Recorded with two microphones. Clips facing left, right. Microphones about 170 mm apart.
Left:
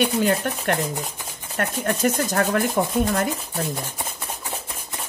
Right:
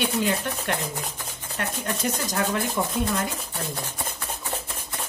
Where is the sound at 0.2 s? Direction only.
50° left (ahead or behind).